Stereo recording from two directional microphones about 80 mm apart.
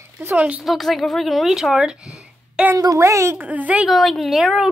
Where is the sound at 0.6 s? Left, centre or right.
Centre.